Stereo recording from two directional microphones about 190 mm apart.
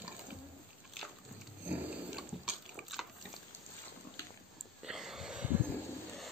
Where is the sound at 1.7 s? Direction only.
5° right (ahead or behind).